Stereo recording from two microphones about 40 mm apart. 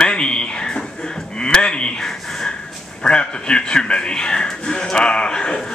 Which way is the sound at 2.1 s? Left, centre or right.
Centre.